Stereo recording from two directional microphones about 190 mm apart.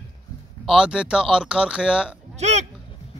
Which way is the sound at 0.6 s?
5° right (ahead or behind).